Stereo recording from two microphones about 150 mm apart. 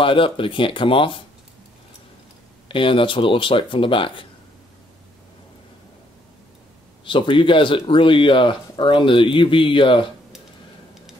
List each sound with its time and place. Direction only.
0.0 s speech: 35° left (ahead or behind)
2.7 s speech: 35° left (ahead or behind)
7.1 s speech: 35° left (ahead or behind)